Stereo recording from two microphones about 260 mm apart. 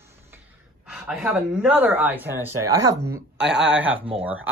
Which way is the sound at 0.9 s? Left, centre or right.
Centre.